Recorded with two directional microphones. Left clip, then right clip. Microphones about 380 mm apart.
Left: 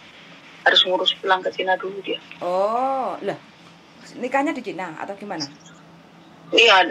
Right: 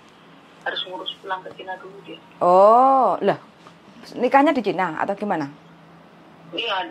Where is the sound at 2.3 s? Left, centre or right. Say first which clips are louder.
Right 9 dB; right.